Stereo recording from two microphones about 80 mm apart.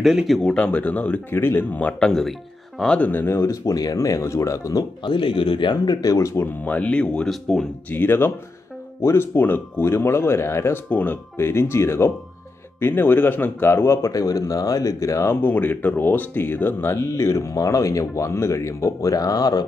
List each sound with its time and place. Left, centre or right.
0.0 s speech: centre
0.4 s speech: centre
3.1 s speech: left
3.3 s speech: left
5.0 s speech: left
6.1 s speech: left
6.6 s speech: centre
7.9 s speech: left
10.9 s speech: left
11.3 s speech: left
15.4 s speech: left